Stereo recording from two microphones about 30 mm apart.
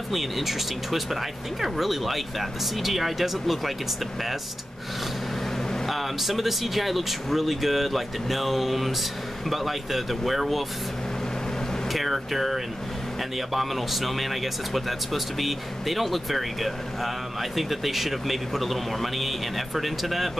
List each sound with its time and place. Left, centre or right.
0.1 s speech: centre
5.9 s speech: centre
11.9 s speech: centre